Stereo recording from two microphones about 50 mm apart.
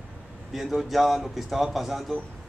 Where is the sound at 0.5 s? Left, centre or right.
Centre.